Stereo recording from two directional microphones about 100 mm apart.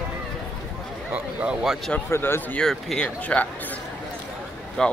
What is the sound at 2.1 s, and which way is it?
Speech, 25° left (ahead or behind).